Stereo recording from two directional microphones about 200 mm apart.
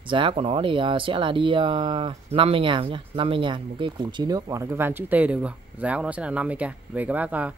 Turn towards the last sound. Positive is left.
turn(degrees=-5)  # may be behind; listen again after turning